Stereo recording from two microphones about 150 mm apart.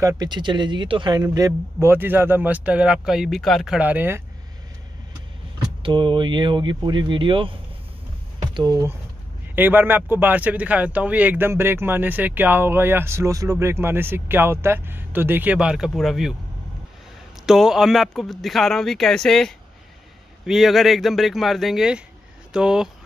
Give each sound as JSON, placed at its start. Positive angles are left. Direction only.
{"t": 0.0, "sound": "speech", "side_deg": -30}
{"t": 5.8, "sound": "speech", "side_deg": -35}
{"t": 9.6, "sound": "speech", "side_deg": -15}
{"t": 17.5, "sound": "speech", "side_deg": 0}